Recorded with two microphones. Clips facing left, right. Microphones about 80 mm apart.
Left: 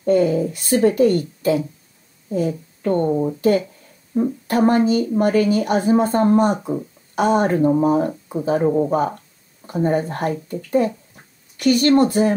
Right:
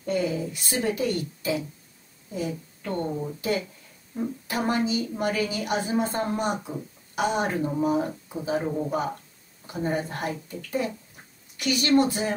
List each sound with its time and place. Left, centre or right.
0.0 s a woman's voice: left
9.7 s a woman's voice: left